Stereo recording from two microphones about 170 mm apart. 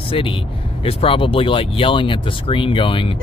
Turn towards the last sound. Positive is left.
turn(degrees=30)  # may be behind; listen again after turning